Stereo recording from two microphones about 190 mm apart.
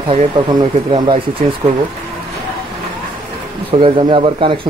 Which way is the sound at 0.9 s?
25° right (ahead or behind).